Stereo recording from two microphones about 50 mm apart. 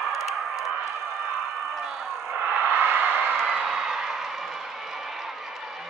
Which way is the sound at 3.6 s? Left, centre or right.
Centre.